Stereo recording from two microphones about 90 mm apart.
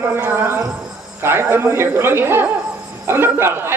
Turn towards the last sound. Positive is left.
turn(degrees=-25)  # may be behind; listen again after turning